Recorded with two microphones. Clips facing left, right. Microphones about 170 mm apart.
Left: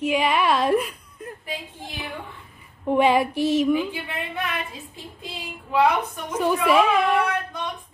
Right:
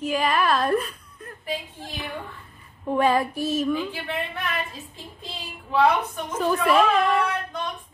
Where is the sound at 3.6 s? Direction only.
15° left (ahead or behind).